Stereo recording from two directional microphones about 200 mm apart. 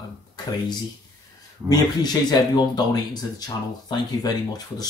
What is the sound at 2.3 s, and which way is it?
Speech, 20° left (ahead or behind).